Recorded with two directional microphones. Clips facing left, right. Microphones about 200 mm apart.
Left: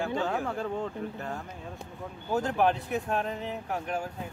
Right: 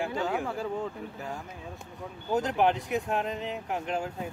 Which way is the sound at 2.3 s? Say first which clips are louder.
Right 1 dB; 15° right (ahead or behind).